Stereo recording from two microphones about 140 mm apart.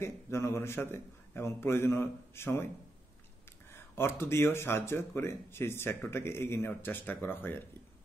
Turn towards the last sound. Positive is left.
turn(degrees=15)  # may be behind; listen again after turning